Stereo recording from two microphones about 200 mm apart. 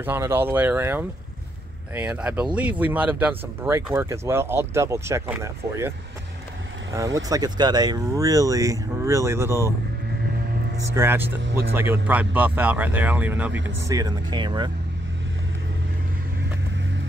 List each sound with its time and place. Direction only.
0.0 s speech: 10° right (ahead or behind)
7.2 s speech: 20° right (ahead or behind)
11.0 s speech: 10° right (ahead or behind)